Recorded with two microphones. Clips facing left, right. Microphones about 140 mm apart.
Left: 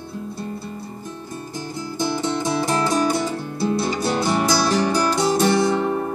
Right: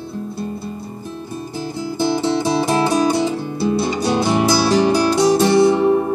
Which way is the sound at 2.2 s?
10° right (ahead or behind).